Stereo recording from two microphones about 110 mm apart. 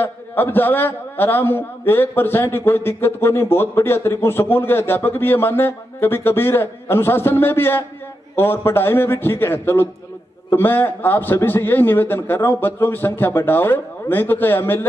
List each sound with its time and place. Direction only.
0.0 s a man's voice: 20° left (ahead or behind)